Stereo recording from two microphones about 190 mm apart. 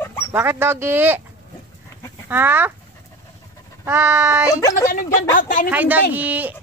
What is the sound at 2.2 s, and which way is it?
Speech, 10° right (ahead or behind).